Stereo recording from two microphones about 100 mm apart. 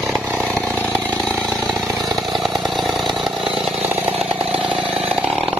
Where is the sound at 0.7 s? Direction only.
15° left (ahead or behind).